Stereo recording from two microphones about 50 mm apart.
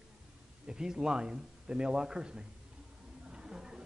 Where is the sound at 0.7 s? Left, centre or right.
Centre.